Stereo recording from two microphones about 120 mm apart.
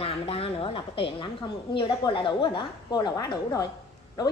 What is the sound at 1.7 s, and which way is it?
A woman's voice, 45° left (ahead or behind).